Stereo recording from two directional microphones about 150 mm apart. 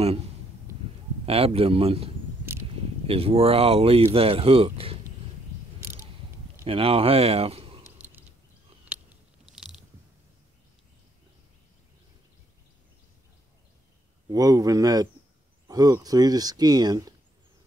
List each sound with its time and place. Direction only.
1.2 s speech: 40° right (ahead or behind)
6.6 s a man's voice: 40° right (ahead or behind)
7.8 s a sound: 15° right (ahead or behind)
9.5 s biting: 5° right (ahead or behind)
14.3 s speech: 25° right (ahead or behind)